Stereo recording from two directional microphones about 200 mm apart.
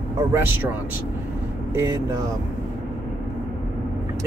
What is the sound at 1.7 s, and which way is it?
Speech, 15° right (ahead or behind).